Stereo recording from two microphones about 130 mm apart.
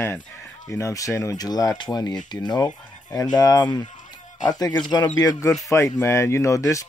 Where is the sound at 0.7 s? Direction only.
20° left (ahead or behind).